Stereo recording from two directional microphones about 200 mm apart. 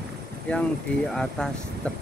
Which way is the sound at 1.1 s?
5° left (ahead or behind).